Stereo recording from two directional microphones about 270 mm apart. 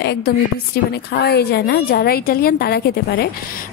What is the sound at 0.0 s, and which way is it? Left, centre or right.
A woman's voice, left.